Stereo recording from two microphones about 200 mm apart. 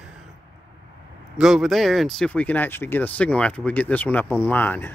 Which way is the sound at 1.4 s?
Centre (ahead or behind).